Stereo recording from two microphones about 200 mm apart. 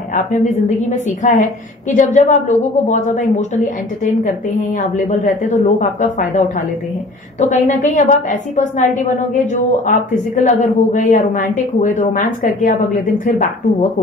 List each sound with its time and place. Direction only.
0.1 s a woman's voice: 35° left (ahead or behind)